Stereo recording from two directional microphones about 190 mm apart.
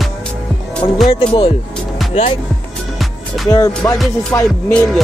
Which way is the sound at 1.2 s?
30° left (ahead or behind).